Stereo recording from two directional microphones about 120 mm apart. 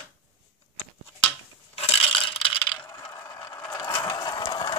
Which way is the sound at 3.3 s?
30° left (ahead or behind).